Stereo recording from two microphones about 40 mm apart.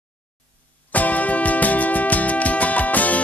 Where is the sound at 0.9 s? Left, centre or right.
Left.